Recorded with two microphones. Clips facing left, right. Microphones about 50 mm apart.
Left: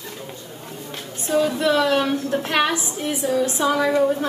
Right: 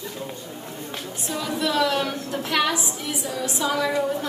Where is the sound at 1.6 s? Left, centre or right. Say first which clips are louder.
Left 4 dB; left.